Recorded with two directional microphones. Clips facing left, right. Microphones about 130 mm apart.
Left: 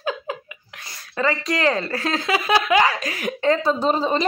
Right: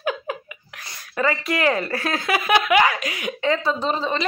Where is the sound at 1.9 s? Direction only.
25° left (ahead or behind).